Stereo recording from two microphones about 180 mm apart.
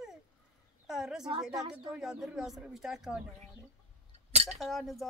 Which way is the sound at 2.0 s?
5° right (ahead or behind).